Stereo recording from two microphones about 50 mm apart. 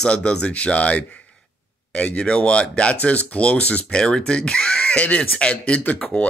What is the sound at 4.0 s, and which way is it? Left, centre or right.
Speech, centre.